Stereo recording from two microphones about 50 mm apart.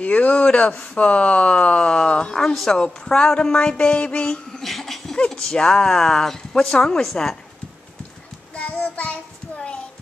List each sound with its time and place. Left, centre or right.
0.0 s speech: left; by 2.8 s centre
2.8 s speech: centre
8.5 s child singing: left